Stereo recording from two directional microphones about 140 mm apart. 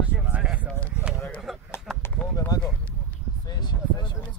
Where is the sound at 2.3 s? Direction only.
25° left (ahead or behind).